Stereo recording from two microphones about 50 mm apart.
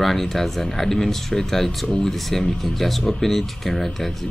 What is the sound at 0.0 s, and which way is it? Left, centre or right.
Speech, centre.